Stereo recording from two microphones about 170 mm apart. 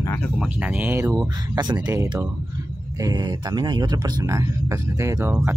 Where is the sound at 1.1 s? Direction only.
20° right (ahead or behind).